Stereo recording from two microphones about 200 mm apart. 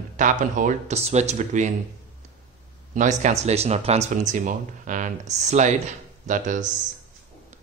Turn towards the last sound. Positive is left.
turn(degrees=-40)  # may be behind; listen again after turning